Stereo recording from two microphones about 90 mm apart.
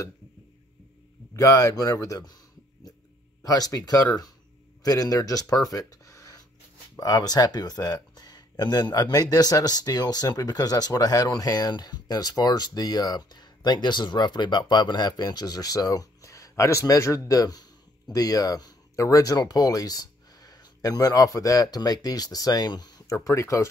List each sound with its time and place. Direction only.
1.3 s speech: 35° left (ahead or behind)
3.4 s speech: 45° left (ahead or behind)
23.1 s speech: 35° left (ahead or behind)